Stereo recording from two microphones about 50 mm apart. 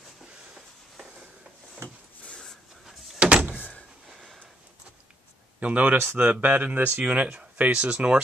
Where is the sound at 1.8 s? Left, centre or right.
Right.